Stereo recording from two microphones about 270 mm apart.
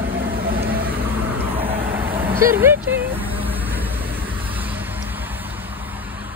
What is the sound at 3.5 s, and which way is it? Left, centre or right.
Vehicle, centre.